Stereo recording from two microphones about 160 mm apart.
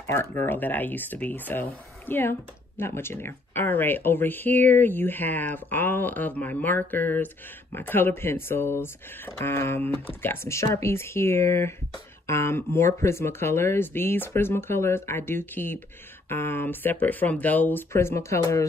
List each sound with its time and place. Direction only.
0.1 s speech: 15° left (ahead or behind)